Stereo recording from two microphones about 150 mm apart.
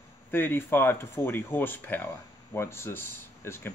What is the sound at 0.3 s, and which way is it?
Speech, 15° left (ahead or behind).